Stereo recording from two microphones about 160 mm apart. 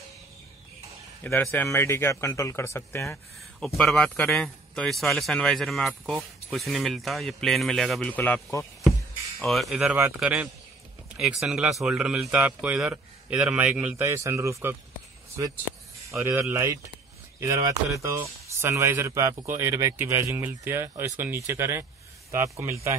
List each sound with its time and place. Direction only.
1.2 s speech: 10° left (ahead or behind)
3.5 s speech: centre (ahead or behind)
9.4 s speech: centre (ahead or behind); by 14.8 s 15° right (ahead or behind)
16.1 s speech: 15° right (ahead or behind)